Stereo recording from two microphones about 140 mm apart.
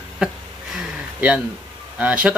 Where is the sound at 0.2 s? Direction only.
5° right (ahead or behind).